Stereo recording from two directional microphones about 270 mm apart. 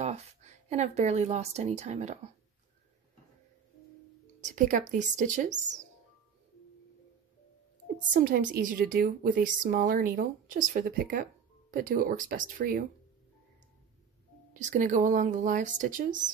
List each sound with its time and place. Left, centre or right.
0.0 s speech: right
4.4 s speech: right
8.1 s speech: right
14.5 s speech: right